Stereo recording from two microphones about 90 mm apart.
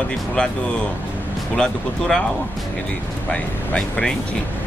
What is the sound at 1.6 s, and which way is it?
Speech, 10° left (ahead or behind).